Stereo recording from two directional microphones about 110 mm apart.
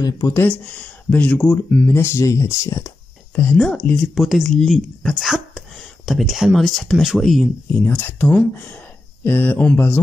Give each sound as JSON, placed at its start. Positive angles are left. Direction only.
{"t": 0.0, "sound": "speech", "side_deg": 35}
{"t": 0.4, "sound": "speech", "side_deg": 15}
{"t": 3.5, "sound": "speech", "side_deg": 5}
{"t": 7.8, "sound": "speech", "side_deg": 15}